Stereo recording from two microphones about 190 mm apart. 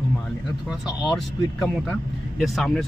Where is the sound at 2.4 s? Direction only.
Centre (ahead or behind).